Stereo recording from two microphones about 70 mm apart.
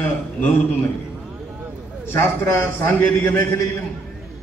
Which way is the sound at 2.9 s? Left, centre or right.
Left.